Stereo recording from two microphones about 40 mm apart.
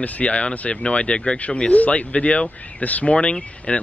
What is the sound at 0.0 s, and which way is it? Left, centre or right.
Speech, left.